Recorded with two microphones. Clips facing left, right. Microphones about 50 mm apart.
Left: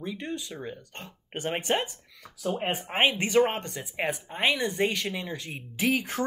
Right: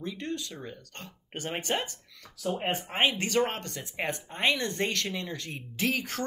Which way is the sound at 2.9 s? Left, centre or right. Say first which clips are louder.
Left 4 dB; left.